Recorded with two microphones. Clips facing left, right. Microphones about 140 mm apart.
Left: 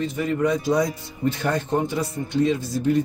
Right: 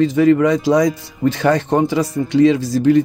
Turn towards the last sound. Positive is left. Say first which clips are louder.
# right 8 dB
turn(degrees=-90)